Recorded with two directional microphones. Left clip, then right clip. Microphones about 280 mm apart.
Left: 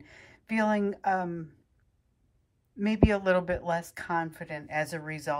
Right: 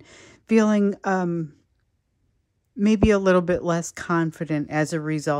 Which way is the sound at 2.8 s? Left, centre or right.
Right.